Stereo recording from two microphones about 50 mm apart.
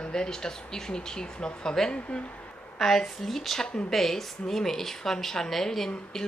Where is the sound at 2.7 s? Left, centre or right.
Centre.